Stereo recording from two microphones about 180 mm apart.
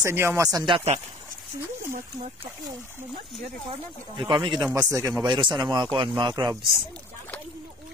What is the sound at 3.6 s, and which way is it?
Speech, 25° right (ahead or behind).